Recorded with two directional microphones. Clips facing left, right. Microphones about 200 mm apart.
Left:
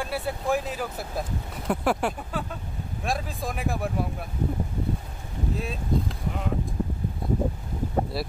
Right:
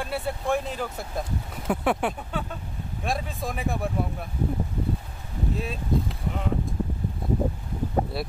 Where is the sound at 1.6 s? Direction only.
Centre (ahead or behind).